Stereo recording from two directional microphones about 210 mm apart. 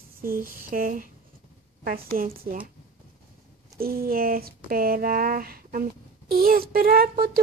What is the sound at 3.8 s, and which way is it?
Speech, 45° right (ahead or behind).